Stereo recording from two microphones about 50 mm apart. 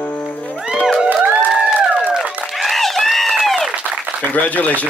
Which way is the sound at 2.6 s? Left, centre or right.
Centre.